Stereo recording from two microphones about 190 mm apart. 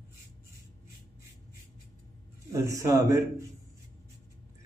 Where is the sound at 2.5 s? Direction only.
15° right (ahead or behind).